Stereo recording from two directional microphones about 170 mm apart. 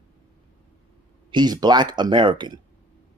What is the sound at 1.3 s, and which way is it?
Speech, 25° right (ahead or behind).